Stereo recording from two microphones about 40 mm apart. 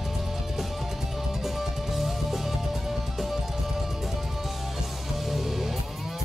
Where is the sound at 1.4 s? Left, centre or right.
Centre.